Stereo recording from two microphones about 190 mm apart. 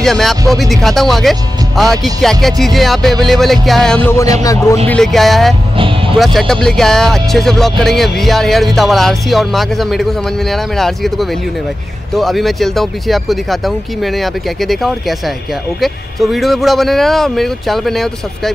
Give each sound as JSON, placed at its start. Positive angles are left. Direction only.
{"t": 0.0, "sound": "a man's voice", "side_deg": 0}
{"t": 4.8, "sound": "speech", "side_deg": 5}
{"t": 5.8, "sound": "music", "side_deg": -25}
{"t": 6.1, "sound": "speech", "side_deg": 0}